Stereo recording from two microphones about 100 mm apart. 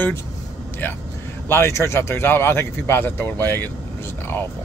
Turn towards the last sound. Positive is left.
turn(degrees=20)  # may be behind; listen again after turning